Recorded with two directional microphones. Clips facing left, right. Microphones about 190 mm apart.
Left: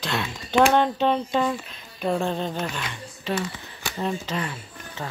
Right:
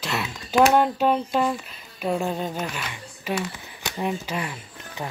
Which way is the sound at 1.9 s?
5° right (ahead or behind).